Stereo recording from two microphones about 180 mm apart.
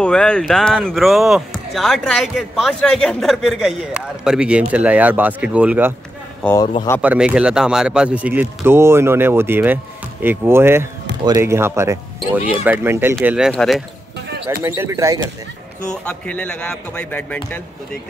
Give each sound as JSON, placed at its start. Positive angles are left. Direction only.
{"t": 0.0, "sound": "speech", "side_deg": 5}
{"t": 6.6, "sound": "speech", "side_deg": 25}
{"t": 7.0, "sound": "speech", "side_deg": -5}
{"t": 13.5, "sound": "speech", "side_deg": 0}
{"t": 14.6, "sound": "speech", "side_deg": -15}
{"t": 15.8, "sound": "speech", "side_deg": 5}